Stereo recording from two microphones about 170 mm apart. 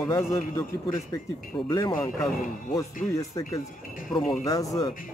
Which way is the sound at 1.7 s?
20° left (ahead or behind).